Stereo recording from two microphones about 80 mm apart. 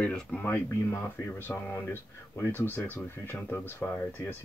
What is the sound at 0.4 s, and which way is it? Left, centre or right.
Speech, left.